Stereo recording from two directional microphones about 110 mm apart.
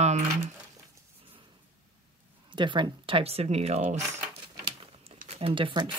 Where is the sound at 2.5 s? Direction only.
45° right (ahead or behind); by 3.8 s 75° right (ahead or behind).